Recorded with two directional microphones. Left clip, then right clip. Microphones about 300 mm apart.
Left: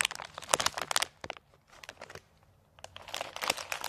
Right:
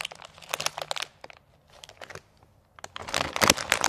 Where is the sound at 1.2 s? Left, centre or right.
Left.